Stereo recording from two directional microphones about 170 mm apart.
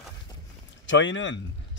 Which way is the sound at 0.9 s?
90° left.